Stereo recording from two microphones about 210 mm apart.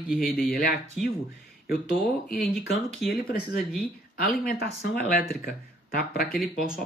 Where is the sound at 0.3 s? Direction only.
50° left (ahead or behind).